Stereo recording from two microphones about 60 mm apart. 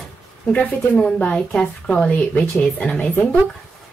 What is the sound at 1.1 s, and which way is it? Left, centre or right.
Speech, centre.